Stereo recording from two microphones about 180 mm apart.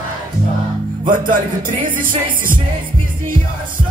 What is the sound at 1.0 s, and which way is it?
Music, 50° right (ahead or behind).